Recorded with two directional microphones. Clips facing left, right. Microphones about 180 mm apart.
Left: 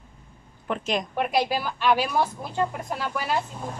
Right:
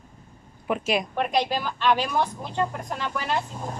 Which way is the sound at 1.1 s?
5° left (ahead or behind).